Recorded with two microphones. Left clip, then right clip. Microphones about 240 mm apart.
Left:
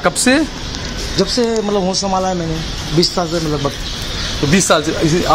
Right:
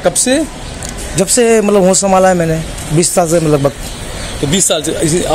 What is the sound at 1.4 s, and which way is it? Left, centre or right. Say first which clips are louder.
Speech: right 11 dB; right.